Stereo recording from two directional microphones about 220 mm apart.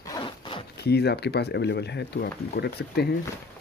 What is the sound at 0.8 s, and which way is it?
Speech, 50° left (ahead or behind).